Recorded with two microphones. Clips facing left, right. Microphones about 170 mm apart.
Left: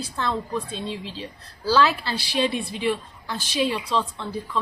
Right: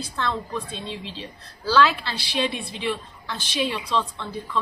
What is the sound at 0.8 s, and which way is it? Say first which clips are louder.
A woman's voice: left 2 dB; 40° left (ahead or behind).